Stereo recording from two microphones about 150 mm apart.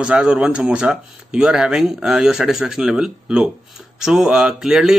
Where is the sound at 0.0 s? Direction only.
5° right (ahead or behind).